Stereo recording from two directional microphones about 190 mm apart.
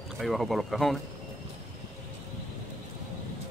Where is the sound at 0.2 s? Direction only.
Centre (ahead or behind).